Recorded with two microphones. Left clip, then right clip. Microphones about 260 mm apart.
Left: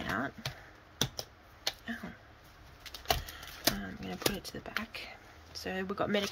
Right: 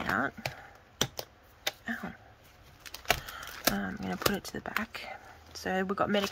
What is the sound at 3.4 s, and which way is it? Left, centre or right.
Speech, centre.